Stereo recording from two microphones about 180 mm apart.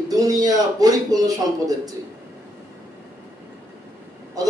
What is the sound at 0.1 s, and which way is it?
A man's voice, 20° right (ahead or behind).